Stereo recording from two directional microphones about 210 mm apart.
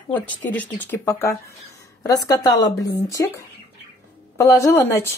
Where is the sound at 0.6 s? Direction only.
10° left (ahead or behind).